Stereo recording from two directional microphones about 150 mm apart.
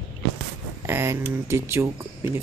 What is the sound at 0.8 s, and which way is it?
Speech, 15° right (ahead or behind).